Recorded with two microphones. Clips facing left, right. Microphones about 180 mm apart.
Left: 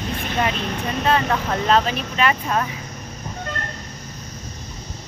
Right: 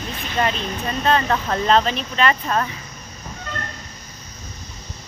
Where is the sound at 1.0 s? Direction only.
5° left (ahead or behind).